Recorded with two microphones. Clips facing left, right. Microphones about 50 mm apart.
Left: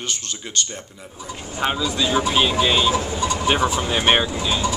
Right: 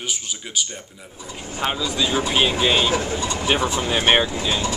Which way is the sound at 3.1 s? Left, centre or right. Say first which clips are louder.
Left 2 dB; left.